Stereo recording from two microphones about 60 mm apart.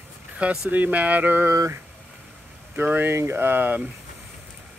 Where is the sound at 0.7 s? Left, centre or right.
Right.